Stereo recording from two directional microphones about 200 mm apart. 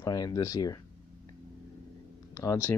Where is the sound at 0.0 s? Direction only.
20° left (ahead or behind).